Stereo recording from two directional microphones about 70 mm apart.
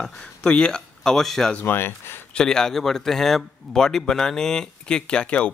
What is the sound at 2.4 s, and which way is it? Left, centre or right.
A man's voice, centre.